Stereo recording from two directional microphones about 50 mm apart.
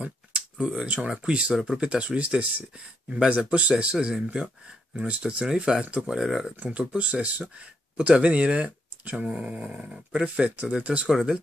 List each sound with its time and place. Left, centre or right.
0.0 s a sound: right
1.1 s speech: right
1.5 s speech: centre
6.5 s speech: right
11.1 s speech: centre